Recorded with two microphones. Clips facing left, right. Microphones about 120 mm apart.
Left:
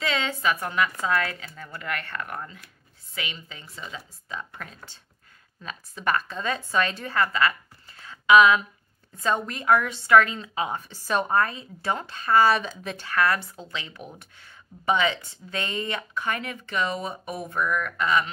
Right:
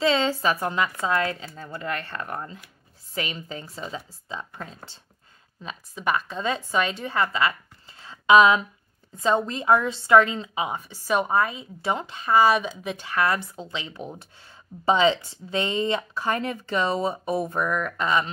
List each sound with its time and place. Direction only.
0.0 s a woman's voice: 30° right (ahead or behind)
3.2 s a woman's voice: 40° right (ahead or behind); by 7.5 s 20° right (ahead or behind)
8.0 s a sound: 30° right (ahead or behind)
9.1 s a woman's voice: 20° right (ahead or behind)